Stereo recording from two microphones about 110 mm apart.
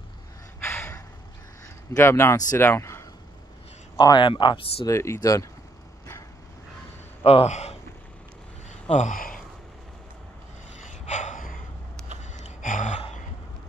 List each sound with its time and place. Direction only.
0.6 s gasp: 20° left (ahead or behind)
2.0 s a man's voice: 20° left (ahead or behind)
4.0 s speech: 45° left (ahead or behind)
4.8 s speech: 25° left (ahead or behind)
7.2 s speech: 80° left
8.6 s a sound: 90° left
11.1 s gasp: 90° left
12.4 s gasp: 90° left